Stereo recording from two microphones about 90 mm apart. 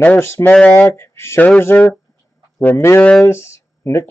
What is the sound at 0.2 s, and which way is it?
Speech, 30° left (ahead or behind).